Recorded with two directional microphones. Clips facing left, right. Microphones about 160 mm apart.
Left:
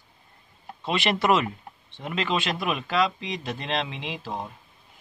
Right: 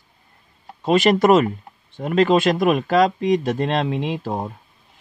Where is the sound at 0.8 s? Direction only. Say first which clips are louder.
Right 9 dB; 45° right (ahead or behind).